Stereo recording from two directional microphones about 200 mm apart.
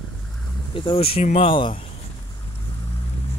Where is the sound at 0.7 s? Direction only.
25° left (ahead or behind).